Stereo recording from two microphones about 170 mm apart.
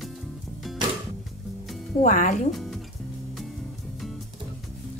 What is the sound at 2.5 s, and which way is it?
Music, centre (ahead or behind).